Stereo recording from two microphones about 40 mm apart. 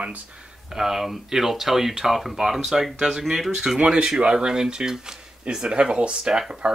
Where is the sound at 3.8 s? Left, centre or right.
Right.